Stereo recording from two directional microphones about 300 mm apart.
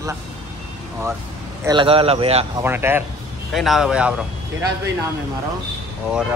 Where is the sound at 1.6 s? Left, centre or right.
Centre.